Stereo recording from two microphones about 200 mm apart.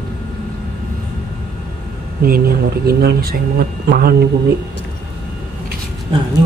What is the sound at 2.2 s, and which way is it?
Speech, 50° right (ahead or behind).